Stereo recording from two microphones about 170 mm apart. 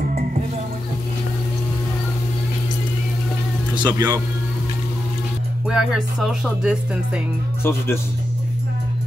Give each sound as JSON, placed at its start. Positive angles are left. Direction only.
{"t": 3.7, "sound": "speech", "side_deg": -25}
{"t": 5.7, "sound": "speech", "side_deg": 0}
{"t": 7.6, "sound": "speech", "side_deg": 15}